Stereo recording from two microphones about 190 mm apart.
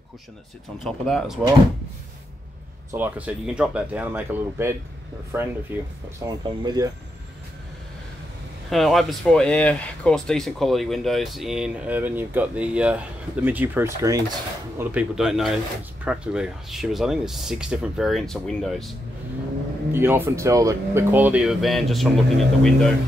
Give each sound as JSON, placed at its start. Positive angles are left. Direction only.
{"t": 0.8, "sound": "speech", "side_deg": 0}
{"t": 2.9, "sound": "speech", "side_deg": -10}
{"t": 8.6, "sound": "speech", "side_deg": 0}
{"t": 19.9, "sound": "speech", "side_deg": -10}